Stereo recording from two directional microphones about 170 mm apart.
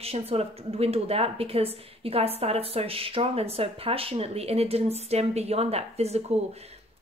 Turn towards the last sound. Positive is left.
turn(degrees=-40)  # may be behind; listen again after turning